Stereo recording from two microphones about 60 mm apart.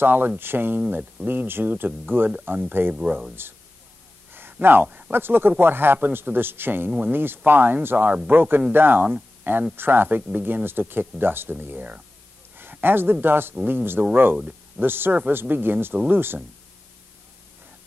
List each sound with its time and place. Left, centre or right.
0.0 s speech: right
2.9 s speech: centre
4.3 s a sound: right
5.1 s speech: right
12.5 s speech: right